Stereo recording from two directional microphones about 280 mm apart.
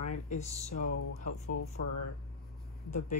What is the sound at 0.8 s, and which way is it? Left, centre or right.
Speech, left.